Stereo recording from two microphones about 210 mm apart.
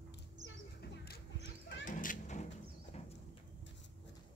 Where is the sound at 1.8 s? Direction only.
40° left (ahead or behind).